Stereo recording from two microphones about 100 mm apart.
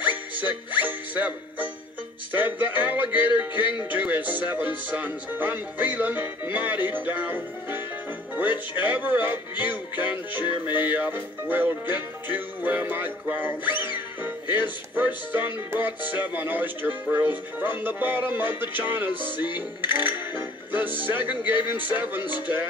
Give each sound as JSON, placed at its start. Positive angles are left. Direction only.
{"t": 0.0, "sound": "music", "side_deg": -15}
{"t": 19.9, "sound": "music", "side_deg": -20}
{"t": 21.3, "sound": "music", "side_deg": -15}